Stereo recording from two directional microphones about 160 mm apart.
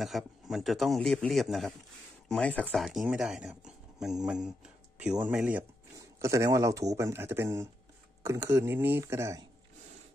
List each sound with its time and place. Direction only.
0.0 s a man's voice: centre (ahead or behind)
5.9 s speech: 20° right (ahead or behind)